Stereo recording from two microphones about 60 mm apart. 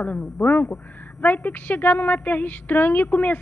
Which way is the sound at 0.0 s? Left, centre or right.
Left.